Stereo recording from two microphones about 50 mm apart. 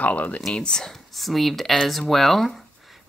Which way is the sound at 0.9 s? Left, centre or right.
Centre.